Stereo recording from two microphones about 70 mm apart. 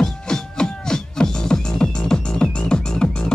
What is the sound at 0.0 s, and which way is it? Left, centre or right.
Music, centre.